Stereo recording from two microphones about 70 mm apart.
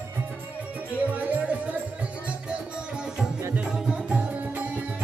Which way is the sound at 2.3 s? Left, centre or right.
Centre.